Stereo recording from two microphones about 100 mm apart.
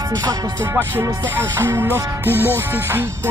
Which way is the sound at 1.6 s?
25° right (ahead or behind).